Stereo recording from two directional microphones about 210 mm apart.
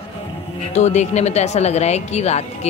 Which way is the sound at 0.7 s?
35° left (ahead or behind).